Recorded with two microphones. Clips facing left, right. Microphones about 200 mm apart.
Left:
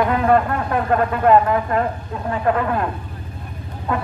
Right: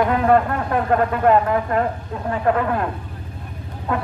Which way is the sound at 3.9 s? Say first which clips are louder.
Even; 50° right (ahead or behind).